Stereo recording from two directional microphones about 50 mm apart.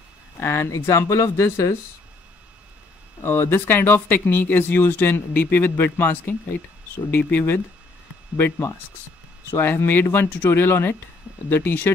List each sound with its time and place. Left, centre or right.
0.4 s speech: left
3.3 s speech: left
9.5 s speech: left